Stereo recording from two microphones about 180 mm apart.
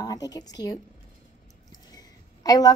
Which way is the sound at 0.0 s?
20° left (ahead or behind).